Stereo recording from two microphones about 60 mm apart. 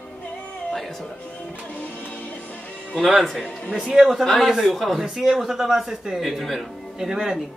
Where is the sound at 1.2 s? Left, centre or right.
Left.